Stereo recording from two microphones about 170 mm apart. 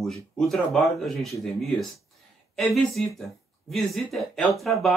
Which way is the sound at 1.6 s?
Centre (ahead or behind).